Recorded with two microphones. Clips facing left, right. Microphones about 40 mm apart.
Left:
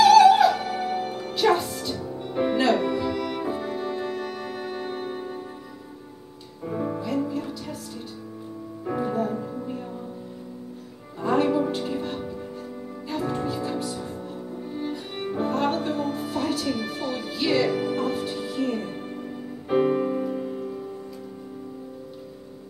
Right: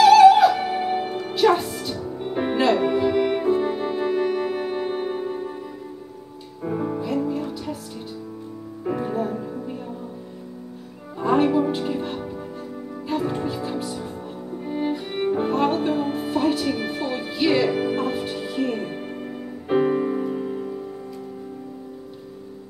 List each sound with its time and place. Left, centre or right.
0.0 s music: centre
0.6 s music: right; by 2.0 s centre
2.1 s music: right
6.6 s music: centre
8.8 s music: centre
11.1 s music: right
13.3 s music: centre
19.7 s music: centre